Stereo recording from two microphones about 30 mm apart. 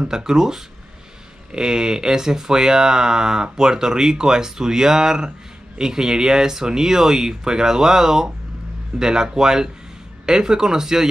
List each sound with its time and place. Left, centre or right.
0.1 s speech: centre